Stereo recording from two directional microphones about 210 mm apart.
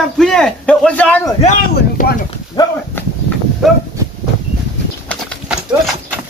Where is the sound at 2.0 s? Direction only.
40° left (ahead or behind).